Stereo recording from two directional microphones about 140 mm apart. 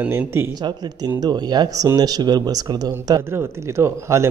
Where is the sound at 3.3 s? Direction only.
15° right (ahead or behind).